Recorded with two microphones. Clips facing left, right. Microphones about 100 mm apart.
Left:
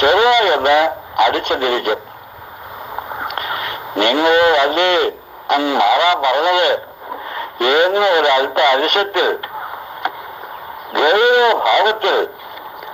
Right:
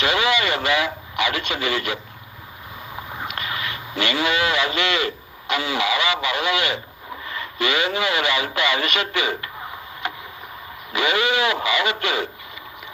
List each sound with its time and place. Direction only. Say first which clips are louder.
0.0 s speech: left 9 dB; 50° left (ahead or behind)
3.0 s speech: left 7 dB; 45° left (ahead or behind)